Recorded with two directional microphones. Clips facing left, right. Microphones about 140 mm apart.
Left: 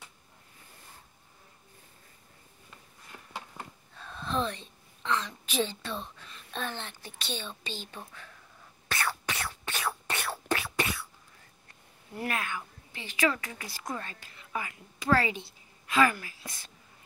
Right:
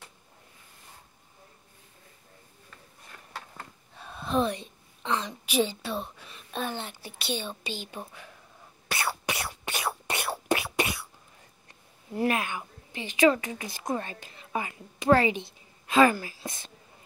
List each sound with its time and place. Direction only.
3.1 s a sound: 20° left (ahead or behind)
3.9 s speech: 15° right (ahead or behind)
8.8 s whispering: 10° right (ahead or behind)
12.2 s a woman's voice: 20° right (ahead or behind)